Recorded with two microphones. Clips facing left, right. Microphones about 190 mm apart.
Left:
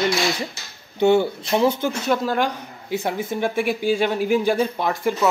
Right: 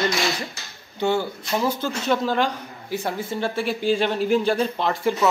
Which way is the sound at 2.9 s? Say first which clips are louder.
Left 3 dB; 20° left (ahead or behind).